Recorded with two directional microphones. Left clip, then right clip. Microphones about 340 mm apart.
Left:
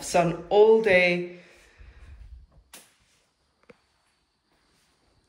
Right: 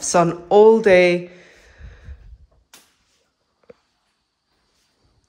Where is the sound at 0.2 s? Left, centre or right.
Centre.